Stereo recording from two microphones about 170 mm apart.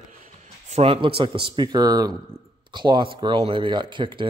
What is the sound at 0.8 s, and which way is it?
Speech, 35° right (ahead or behind).